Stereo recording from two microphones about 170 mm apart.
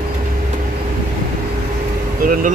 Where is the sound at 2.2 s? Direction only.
55° right (ahead or behind).